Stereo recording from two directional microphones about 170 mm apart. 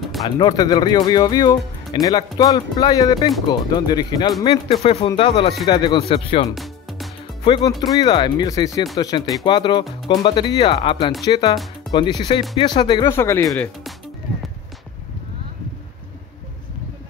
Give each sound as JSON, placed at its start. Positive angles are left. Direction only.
{"t": 0.4, "sound": "speech", "side_deg": 25}
{"t": 6.5, "sound": "music", "side_deg": 0}
{"t": 7.4, "sound": "speech", "side_deg": 25}
{"t": 7.7, "sound": "speech", "side_deg": 0}
{"t": 8.0, "sound": "speech", "side_deg": 25}
{"t": 13.1, "sound": "speech", "side_deg": 15}
{"t": 13.5, "sound": "speech", "side_deg": 0}